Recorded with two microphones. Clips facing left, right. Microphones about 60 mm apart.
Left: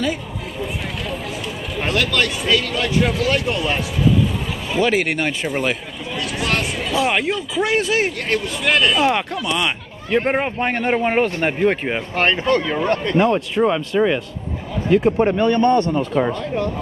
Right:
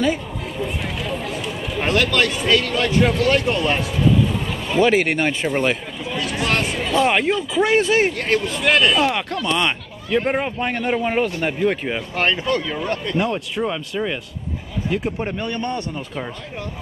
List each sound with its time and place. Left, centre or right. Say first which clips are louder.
0.0 s music: right 2 dB; centre
1.8 s speech: right 1 dB; centre
10.1 s speech: left 2 dB; left
12.9 s a man's voice: left 4 dB; left
13.2 s speech: left 8 dB; left
14.9 s a man's voice: left 9 dB; left